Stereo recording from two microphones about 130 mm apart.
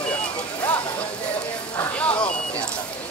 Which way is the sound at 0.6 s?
15° left (ahead or behind).